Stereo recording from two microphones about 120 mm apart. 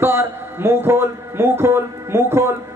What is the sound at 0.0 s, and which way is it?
A man's voice, 20° right (ahead or behind).